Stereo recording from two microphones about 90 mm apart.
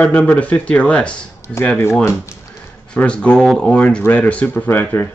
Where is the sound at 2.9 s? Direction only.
15° left (ahead or behind).